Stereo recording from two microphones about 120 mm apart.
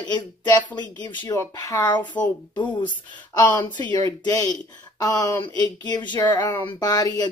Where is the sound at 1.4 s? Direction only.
25° left (ahead or behind).